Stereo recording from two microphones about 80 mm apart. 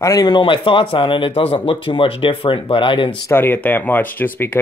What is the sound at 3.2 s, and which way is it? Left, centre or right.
Speech, left.